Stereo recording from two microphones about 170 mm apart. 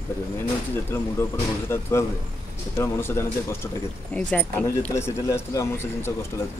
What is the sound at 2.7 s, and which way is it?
Speech, 15° left (ahead or behind).